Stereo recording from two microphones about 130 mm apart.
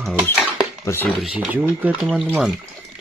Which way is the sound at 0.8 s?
20° left (ahead or behind).